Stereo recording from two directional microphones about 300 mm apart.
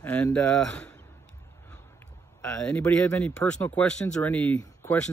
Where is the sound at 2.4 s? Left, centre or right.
Centre.